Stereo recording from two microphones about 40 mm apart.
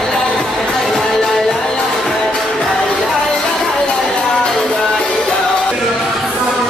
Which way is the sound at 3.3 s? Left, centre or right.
Centre.